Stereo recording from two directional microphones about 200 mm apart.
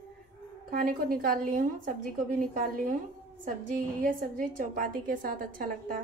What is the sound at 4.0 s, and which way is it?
A woman's voice, 45° right (ahead or behind).